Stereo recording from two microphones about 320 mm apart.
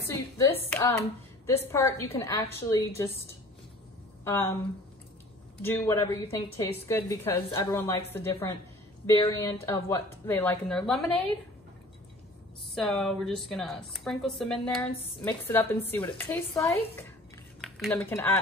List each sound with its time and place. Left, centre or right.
0.1 s a sound: centre
0.7 s a woman's voice: centre
4.2 s speech: centre
5.6 s a woman's voice: centre
12.7 s a woman's voice: centre